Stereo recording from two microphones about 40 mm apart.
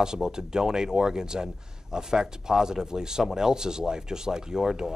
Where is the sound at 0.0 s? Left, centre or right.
Centre.